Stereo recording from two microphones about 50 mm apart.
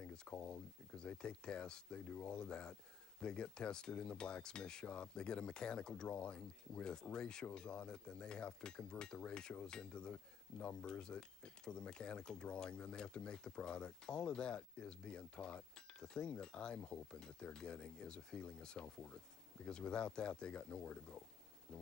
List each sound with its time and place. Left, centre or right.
0.0 s speech: centre